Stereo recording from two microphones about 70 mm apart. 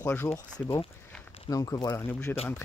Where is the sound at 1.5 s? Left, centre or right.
Left.